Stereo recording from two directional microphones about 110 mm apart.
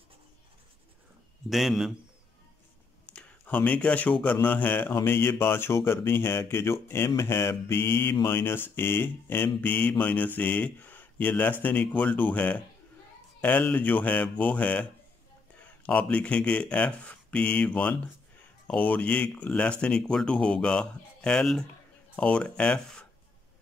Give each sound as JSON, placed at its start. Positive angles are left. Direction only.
{"t": 1.5, "sound": "a man's voice", "side_deg": 0}
{"t": 3.1, "sound": "a sound", "side_deg": 10}
{"t": 4.2, "sound": "speech", "side_deg": 15}